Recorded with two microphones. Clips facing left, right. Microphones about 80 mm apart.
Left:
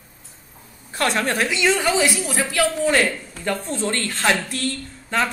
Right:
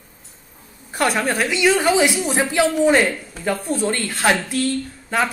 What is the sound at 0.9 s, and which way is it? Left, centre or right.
Speech, centre.